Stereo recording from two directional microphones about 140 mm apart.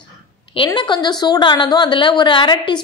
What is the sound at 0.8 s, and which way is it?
A woman's voice, 30° left (ahead or behind).